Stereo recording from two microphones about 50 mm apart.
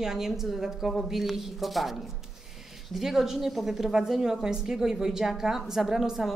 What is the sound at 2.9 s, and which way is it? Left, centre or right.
A woman's voice, centre.